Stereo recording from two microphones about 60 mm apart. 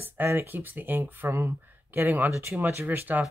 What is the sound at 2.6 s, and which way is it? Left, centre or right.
Speech, right.